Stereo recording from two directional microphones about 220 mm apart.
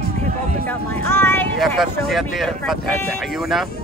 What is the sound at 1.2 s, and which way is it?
Speech, 10° left (ahead or behind).